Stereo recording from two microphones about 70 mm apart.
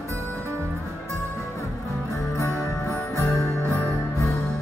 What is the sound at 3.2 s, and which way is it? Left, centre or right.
Music, left.